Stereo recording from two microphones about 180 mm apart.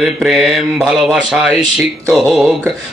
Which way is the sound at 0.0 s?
Centre (ahead or behind).